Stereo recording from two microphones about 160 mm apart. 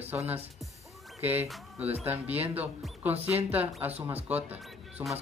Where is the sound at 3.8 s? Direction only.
10° right (ahead or behind).